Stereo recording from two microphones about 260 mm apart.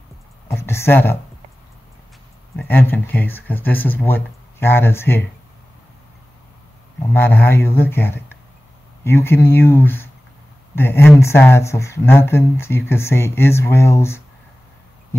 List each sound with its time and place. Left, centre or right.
0.5 s a sound: centre
2.5 s speech: centre
7.0 s speech: centre